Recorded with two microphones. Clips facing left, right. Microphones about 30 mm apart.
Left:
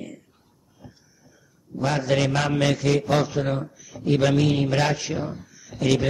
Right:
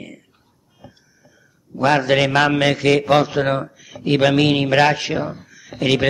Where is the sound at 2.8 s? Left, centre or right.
Right.